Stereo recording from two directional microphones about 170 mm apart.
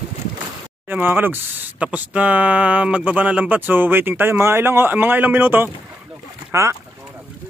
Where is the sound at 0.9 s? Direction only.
10° right (ahead or behind).